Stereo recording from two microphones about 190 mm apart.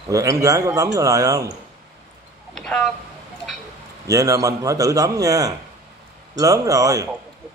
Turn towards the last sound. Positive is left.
turn(degrees=-15)  # may be behind; listen again after turning